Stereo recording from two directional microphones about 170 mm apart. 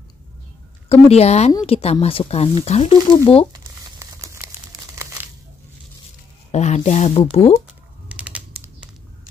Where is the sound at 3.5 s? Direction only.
20° right (ahead or behind).